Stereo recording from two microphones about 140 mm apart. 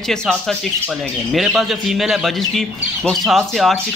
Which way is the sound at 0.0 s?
5° left (ahead or behind).